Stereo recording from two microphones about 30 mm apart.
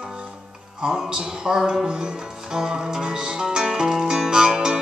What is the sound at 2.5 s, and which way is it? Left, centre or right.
Music, right.